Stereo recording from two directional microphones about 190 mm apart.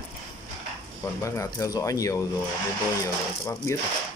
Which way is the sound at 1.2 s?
15° left (ahead or behind).